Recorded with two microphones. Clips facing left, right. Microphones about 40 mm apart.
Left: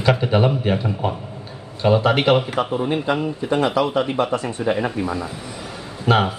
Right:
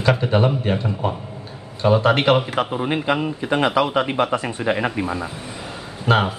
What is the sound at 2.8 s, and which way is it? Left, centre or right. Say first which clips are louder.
Speech: even; right.